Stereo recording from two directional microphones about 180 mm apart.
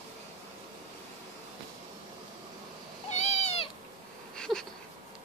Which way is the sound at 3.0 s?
40° left (ahead or behind).